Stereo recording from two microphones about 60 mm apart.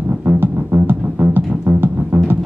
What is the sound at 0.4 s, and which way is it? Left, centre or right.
Music, right.